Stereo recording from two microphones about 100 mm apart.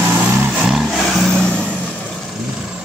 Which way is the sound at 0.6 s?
5° right (ahead or behind).